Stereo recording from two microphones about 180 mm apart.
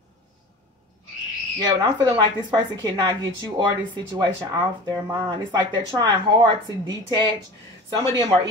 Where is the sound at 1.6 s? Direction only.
25° right (ahead or behind).